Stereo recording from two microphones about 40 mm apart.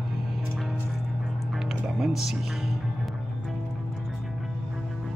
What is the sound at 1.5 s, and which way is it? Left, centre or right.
Music, centre.